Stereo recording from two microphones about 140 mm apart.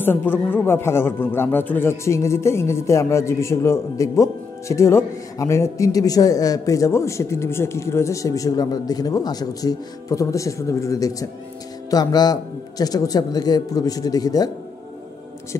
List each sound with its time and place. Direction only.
0.0 s a man's voice: 15° left (ahead or behind)